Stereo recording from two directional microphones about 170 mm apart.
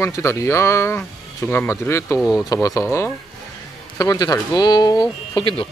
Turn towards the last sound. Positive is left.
turn(degrees=30)  # may be behind; listen again after turning